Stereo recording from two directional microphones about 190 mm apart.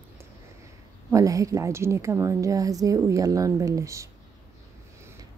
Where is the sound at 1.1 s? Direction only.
15° right (ahead or behind).